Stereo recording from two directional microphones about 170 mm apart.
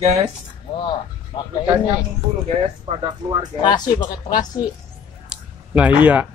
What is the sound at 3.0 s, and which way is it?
Speech, 25° right (ahead or behind).